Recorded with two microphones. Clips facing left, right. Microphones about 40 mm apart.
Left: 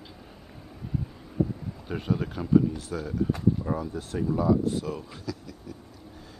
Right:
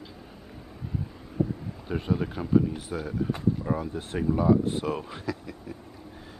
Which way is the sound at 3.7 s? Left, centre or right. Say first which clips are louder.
Even; right.